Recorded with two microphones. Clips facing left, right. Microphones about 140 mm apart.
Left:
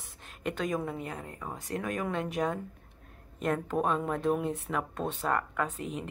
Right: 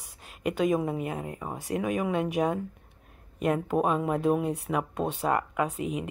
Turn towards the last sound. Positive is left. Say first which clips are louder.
# right 4 dB
turn(degrees=-5)  # may be behind; listen again after turning